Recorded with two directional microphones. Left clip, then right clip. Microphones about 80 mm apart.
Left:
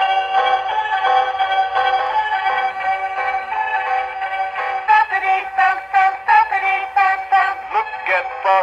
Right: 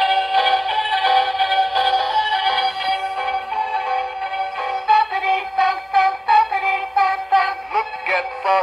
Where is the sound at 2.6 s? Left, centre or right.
Centre.